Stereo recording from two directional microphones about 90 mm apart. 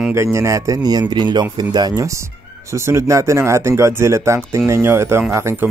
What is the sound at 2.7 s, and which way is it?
Speech, 35° right (ahead or behind).